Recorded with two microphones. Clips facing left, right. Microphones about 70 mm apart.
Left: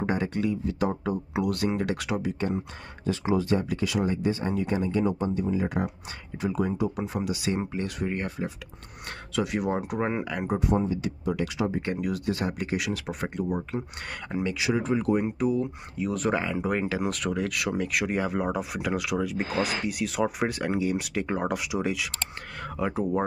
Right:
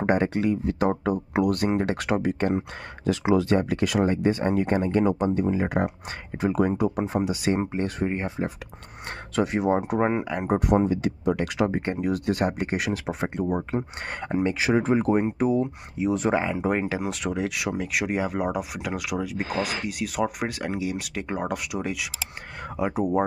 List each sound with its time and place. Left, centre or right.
0.0 s speech: right
1.5 s speech: right
3.1 s speech: right
3.7 s speech: right
9.3 s speech: right
9.6 s speech: right
10.7 s speech: right
11.0 s speech: right
11.8 s speech: right; by 22.3 s centre
22.8 s speech: centre